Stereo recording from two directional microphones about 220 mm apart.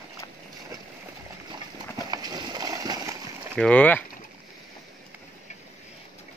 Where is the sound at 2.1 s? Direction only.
20° right (ahead or behind).